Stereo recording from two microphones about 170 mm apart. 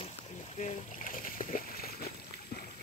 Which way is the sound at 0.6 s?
50° left (ahead or behind).